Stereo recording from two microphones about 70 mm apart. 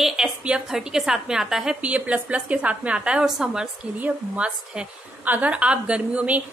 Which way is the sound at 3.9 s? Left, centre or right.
Right.